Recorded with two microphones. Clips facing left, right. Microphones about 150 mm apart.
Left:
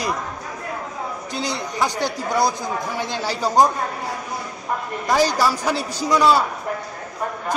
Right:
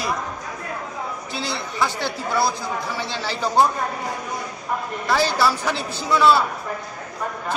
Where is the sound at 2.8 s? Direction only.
45° left (ahead or behind).